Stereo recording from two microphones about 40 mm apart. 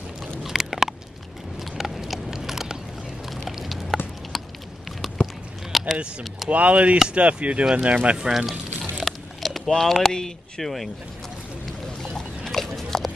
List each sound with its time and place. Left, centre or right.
0.4 s chewing: centre
1.6 s a sound: centre
5.9 s speech: right
8.2 s speech: centre
9.0 s a sound: centre
9.7 s speech: centre
12.4 s pig: centre